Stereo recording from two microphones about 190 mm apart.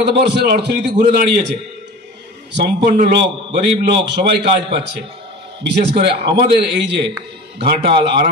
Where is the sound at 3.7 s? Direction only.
65° right (ahead or behind).